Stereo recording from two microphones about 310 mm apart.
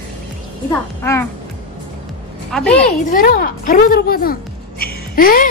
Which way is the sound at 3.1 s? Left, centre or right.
Left.